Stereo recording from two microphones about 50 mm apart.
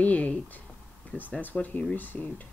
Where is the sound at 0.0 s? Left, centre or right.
Left.